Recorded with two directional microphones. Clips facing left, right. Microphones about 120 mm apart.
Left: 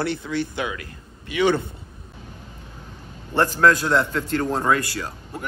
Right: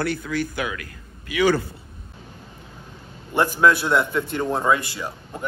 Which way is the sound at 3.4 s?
15° right (ahead or behind).